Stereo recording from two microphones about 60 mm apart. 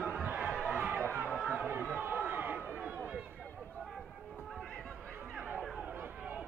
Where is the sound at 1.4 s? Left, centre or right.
Right.